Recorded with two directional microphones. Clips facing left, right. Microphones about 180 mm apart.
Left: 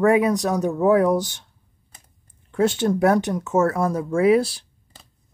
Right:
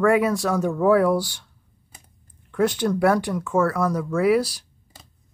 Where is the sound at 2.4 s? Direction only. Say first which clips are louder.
Left 1 dB; 25° left (ahead or behind).